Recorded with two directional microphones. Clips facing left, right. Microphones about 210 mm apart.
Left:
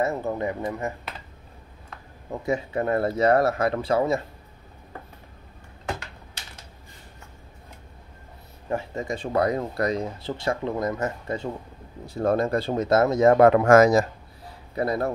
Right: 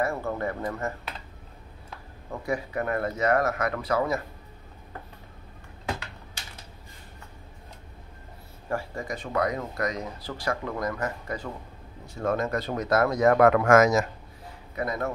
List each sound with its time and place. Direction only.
0.0 s a man's voice: 20° left (ahead or behind)
2.4 s speech: 25° left (ahead or behind)
8.6 s a man's voice: 20° left (ahead or behind)